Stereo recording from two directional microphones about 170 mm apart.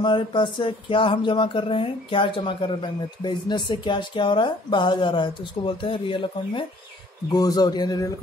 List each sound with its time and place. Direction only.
0.0 s speech: 25° left (ahead or behind)